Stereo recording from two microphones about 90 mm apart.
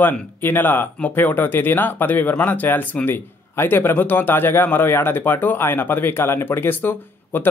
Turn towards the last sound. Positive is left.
turn(degrees=20)  # may be behind; listen again after turning